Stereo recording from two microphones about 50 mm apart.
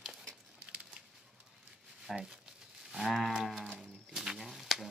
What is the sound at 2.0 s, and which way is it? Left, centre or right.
Speech, centre.